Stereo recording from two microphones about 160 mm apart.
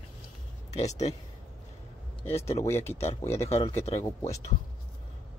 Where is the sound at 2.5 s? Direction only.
15° left (ahead or behind).